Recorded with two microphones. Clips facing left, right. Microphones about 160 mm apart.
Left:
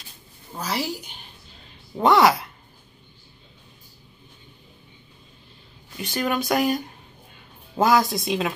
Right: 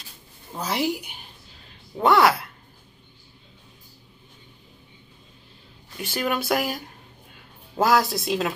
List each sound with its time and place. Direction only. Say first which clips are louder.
0.6 s a woman's voice: right 2 dB; 20° right (ahead or behind)
2.0 s speech: left 1 dB; centre (ahead or behind)
5.9 s speech: left 1 dB; 5° right (ahead or behind)
7.8 s speech: left 1 dB; centre (ahead or behind)